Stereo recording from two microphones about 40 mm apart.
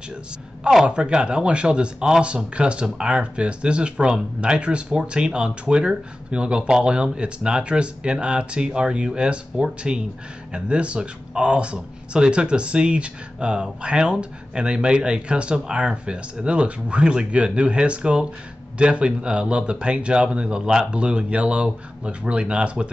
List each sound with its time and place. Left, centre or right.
0.8 s speech: right